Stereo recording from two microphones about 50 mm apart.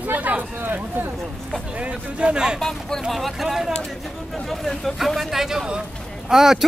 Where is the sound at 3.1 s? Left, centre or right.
Centre.